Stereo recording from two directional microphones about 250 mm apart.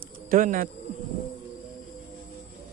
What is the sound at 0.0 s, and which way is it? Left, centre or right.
Bird, right.